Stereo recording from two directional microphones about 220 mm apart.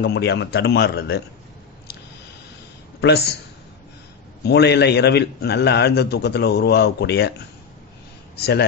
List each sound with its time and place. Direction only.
0.0 s a man's voice: 50° left (ahead or behind)
4.4 s a man's voice: 50° left (ahead or behind)
8.4 s a man's voice: 45° left (ahead or behind)